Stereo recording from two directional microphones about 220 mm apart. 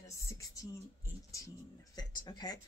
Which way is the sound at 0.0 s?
15° left (ahead or behind).